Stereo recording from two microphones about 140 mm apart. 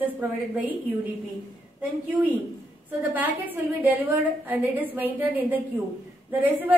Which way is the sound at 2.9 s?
10° right (ahead or behind).